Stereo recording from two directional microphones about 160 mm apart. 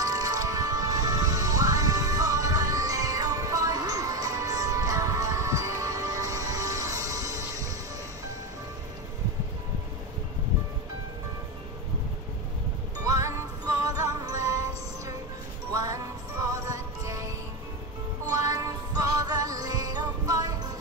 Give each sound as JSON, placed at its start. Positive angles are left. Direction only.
{"t": 0.0, "sound": "music", "side_deg": -20}
{"t": 13.0, "sound": "music", "side_deg": -20}
{"t": 15.7, "sound": "music", "side_deg": -20}